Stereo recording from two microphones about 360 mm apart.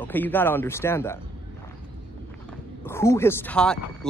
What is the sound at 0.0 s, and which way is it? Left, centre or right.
Speech, centre.